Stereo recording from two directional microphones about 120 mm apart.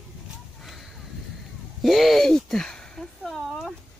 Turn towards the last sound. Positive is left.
turn(degrees=0)  # may be behind; listen again after turning